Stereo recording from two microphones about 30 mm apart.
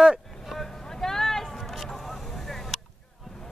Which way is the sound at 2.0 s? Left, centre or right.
Centre.